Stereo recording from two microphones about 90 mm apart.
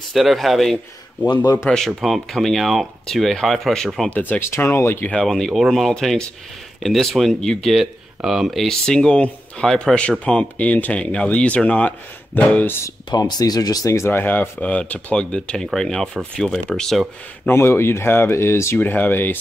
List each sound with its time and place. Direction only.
0.1 s speech: centre (ahead or behind)
1.3 s speech: 45° left (ahead or behind)
1.7 s speech: centre (ahead or behind)
4.1 s speech: 20° left (ahead or behind)
5.2 s speech: 5° left (ahead or behind)
13.1 s speech: 45° left (ahead or behind)
14.1 s speech: 20° left (ahead or behind); by 17.0 s 5° left (ahead or behind)
17.5 s speech: 25° left (ahead or behind)